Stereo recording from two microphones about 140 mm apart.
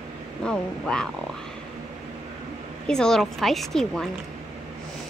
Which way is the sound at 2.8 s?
5° left (ahead or behind).